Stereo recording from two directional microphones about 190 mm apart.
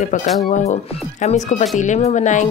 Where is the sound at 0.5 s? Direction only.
40° left (ahead or behind).